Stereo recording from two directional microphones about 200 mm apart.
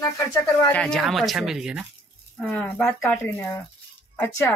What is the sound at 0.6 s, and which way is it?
Speech, 10° left (ahead or behind).